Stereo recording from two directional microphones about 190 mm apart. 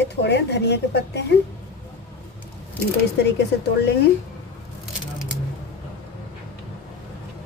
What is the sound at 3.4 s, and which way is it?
Speech, 60° left (ahead or behind).